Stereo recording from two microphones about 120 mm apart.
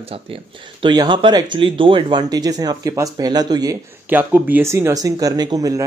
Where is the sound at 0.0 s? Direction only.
55° right (ahead or behind).